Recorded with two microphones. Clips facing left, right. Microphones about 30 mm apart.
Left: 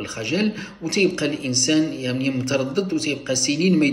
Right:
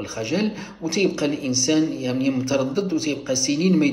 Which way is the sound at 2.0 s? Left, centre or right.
Left.